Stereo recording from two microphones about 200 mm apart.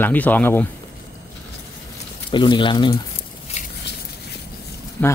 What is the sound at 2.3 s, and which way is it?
Speech, 25° left (ahead or behind).